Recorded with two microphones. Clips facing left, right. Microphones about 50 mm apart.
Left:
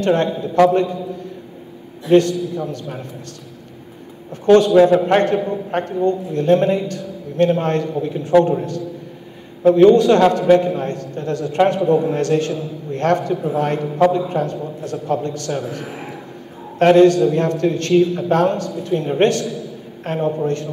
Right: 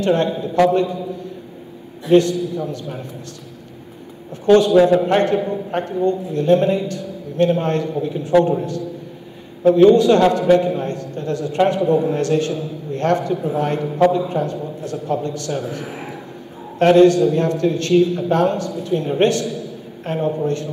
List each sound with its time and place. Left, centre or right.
0.0 s a man's voice: left
4.5 s a man's voice: left
9.7 s a man's voice: left
19.4 s a man's voice: right
20.0 s a man's voice: left